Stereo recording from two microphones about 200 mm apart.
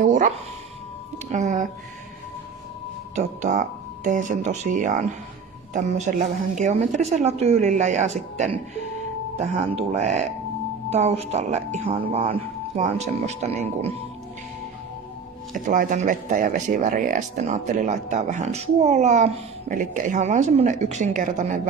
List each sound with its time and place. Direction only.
0.0 s music: 40° right (ahead or behind)
1.3 s speech: 40° right (ahead or behind)
3.2 s speech: 40° right (ahead or behind)
15.5 s speech: 40° right (ahead or behind)